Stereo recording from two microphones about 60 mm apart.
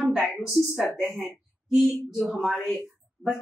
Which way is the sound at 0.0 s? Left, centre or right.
Centre.